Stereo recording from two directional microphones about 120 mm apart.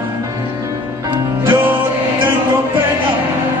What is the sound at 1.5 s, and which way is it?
Music, 15° right (ahead or behind).